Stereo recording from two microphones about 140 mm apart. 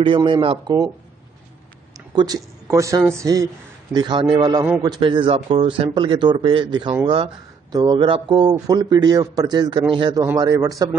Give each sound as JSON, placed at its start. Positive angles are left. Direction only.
{"t": 0.0, "sound": "speech", "side_deg": -35}
{"t": 2.0, "sound": "a man's voice", "side_deg": -25}
{"t": 10.2, "sound": "a man's voice", "side_deg": -20}